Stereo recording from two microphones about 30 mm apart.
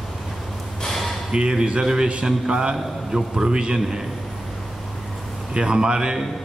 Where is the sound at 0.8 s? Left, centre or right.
Centre.